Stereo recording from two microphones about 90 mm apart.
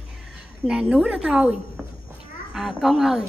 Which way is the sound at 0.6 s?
5° right (ahead or behind).